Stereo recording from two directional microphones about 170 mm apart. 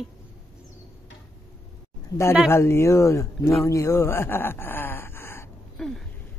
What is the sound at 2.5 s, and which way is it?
Speech, 15° left (ahead or behind).